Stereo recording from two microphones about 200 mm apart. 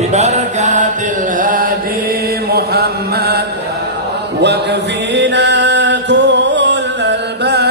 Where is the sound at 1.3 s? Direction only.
45° right (ahead or behind).